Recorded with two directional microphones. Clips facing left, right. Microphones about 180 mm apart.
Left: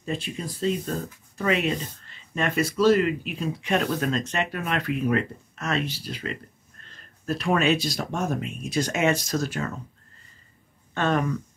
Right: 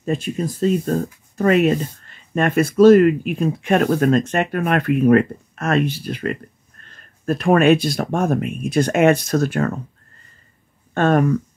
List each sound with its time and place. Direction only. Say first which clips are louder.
0.0 s speech: right 8 dB; 45° right (ahead or behind)
11.0 s speech: right 8 dB; 50° right (ahead or behind)